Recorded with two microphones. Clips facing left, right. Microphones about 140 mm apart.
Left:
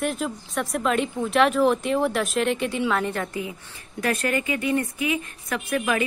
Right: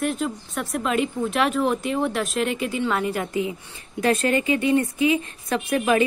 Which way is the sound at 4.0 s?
25° right (ahead or behind).